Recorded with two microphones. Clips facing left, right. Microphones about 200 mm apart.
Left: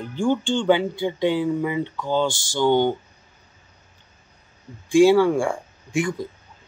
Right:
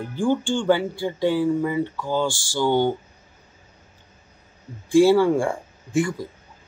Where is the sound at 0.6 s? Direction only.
20° left (ahead or behind).